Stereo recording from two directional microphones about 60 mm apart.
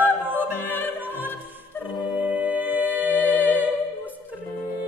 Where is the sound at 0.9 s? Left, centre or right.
Right.